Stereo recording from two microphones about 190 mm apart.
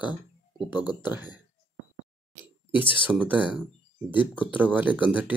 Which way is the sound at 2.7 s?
25° left (ahead or behind).